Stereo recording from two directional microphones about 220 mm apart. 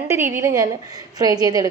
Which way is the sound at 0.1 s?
10° right (ahead or behind).